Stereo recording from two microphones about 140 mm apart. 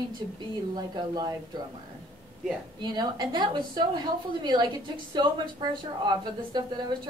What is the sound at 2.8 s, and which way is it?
A woman's voice, 30° right (ahead or behind).